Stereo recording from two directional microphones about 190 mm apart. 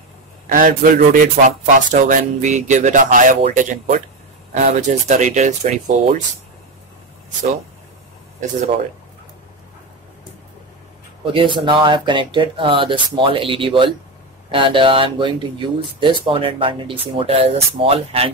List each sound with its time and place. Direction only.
0.5 s a man's voice: 45° right (ahead or behind)
11.3 s speech: 25° right (ahead or behind)